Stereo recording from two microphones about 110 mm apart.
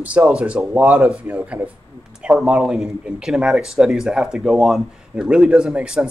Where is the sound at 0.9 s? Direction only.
5° right (ahead or behind).